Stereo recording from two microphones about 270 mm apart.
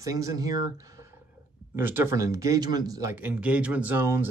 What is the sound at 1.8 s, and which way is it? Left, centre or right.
Speech, centre.